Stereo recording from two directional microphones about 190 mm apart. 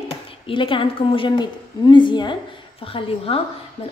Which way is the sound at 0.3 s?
25° left (ahead or behind).